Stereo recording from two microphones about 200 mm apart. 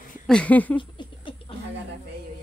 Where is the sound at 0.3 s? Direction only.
5° left (ahead or behind).